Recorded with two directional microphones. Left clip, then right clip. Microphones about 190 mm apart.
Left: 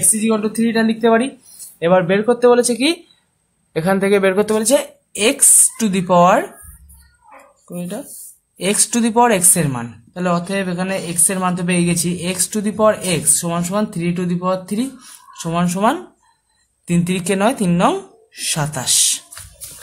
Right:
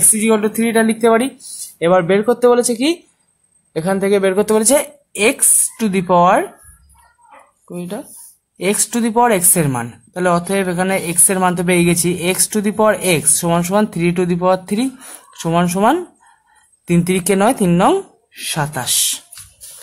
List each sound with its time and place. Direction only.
0.2 s a woman's voice: 35° right (ahead or behind); by 4.6 s 15° right (ahead or behind)
4.6 s speech: 30° right (ahead or behind)
7.6 s speech: 20° right (ahead or behind)
9.6 s a woman's voice: 35° right (ahead or behind)